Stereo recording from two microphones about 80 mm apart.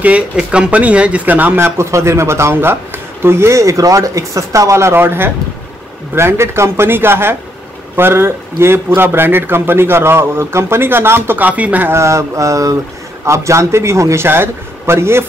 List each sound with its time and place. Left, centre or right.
0.0 s a man's voice: centre
1.8 s a man's voice: right; by 11.9 s centre
11.9 s speech: right